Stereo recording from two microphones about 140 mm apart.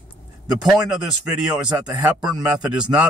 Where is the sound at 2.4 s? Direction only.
10° right (ahead or behind).